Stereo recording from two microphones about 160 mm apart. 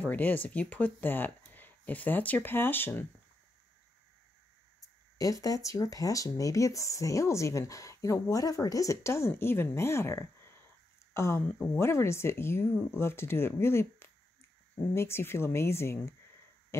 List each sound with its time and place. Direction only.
0.0 s speech: 10° left (ahead or behind)
5.2 s speech: 20° left (ahead or behind)